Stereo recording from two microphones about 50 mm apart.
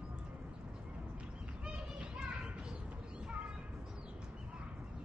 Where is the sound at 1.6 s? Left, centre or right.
Centre.